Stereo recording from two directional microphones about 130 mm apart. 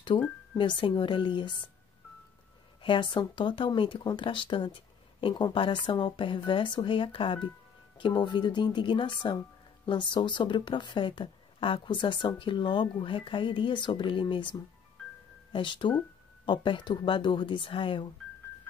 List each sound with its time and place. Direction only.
0.6 s speech: 40° left (ahead or behind)
2.8 s speech: 40° left (ahead or behind)